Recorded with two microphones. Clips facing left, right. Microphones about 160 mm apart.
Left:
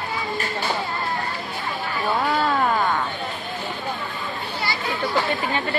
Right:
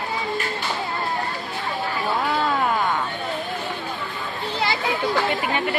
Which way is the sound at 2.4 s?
10° right (ahead or behind).